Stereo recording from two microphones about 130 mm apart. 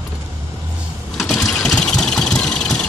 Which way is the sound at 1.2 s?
5° left (ahead or behind).